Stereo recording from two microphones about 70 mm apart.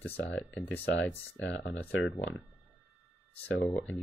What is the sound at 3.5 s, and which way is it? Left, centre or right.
Speech, centre.